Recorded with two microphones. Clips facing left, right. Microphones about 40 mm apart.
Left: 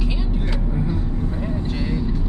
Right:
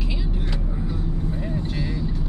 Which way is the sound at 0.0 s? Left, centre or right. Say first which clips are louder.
Left 3 dB; centre.